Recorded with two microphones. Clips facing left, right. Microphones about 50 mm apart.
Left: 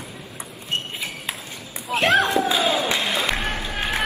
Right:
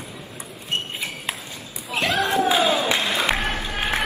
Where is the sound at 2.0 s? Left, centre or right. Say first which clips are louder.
Left 4 dB; left.